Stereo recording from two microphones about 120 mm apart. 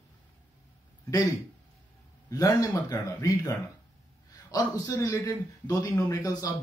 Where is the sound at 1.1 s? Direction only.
30° left (ahead or behind).